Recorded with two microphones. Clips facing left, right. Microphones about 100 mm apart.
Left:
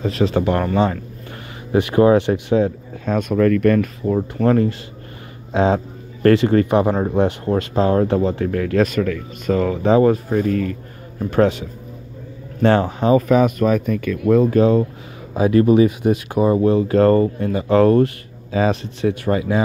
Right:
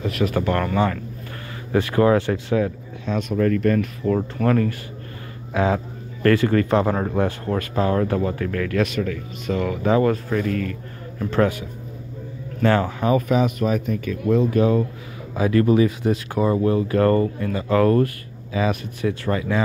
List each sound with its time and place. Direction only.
0.0 s speech: 30° left (ahead or behind)
1.7 s speech: 20° left (ahead or behind)
3.1 s speech: 50° left (ahead or behind)
3.6 s speech: 60° left (ahead or behind)
4.5 s speech: 25° left (ahead or behind)
11.1 s speech: 15° left (ahead or behind)
12.6 s speech: 25° left (ahead or behind)
13.3 s speech: 45° left (ahead or behind)
14.6 s speech: 30° left (ahead or behind)